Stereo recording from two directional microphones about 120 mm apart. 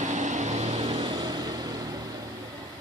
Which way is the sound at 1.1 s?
35° right (ahead or behind).